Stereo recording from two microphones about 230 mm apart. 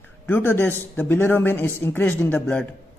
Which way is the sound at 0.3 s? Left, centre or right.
Centre.